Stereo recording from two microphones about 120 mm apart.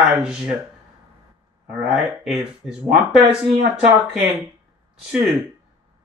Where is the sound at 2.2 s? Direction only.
5° right (ahead or behind).